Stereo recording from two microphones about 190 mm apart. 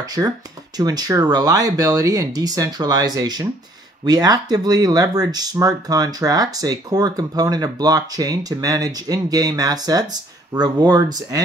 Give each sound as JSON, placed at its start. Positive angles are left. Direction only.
{"t": 0.0, "sound": "speech", "side_deg": -20}